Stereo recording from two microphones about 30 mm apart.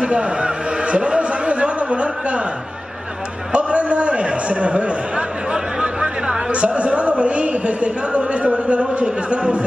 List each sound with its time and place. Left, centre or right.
0.0 s a sound: right
3.5 s a man's voice: right
5.5 s speech: right
6.5 s speech: right